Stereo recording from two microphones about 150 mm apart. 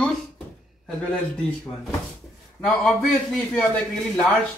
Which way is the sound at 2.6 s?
10° left (ahead or behind).